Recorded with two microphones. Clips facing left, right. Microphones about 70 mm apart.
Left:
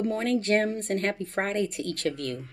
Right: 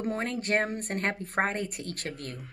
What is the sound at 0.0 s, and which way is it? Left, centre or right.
Speech, right.